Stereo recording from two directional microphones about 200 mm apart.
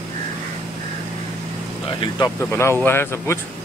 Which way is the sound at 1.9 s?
20° left (ahead or behind).